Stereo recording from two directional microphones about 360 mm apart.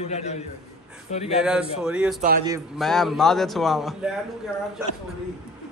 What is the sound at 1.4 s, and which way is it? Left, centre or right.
Speech, centre.